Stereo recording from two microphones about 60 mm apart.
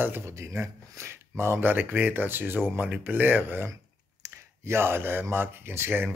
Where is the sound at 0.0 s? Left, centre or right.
Right.